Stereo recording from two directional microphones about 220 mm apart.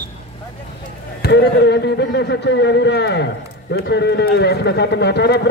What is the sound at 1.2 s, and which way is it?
A man's voice, 50° left (ahead or behind).